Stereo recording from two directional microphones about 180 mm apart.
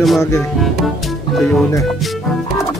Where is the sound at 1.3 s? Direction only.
Centre (ahead or behind).